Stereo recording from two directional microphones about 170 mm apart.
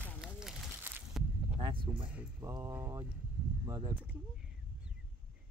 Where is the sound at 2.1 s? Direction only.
10° right (ahead or behind).